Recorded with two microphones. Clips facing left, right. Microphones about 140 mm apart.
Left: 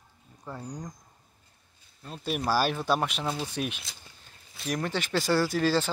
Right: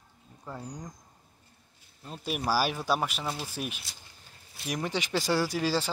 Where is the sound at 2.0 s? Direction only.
10° right (ahead or behind).